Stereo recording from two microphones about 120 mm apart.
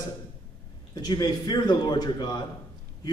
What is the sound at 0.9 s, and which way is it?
Speech, 35° left (ahead or behind).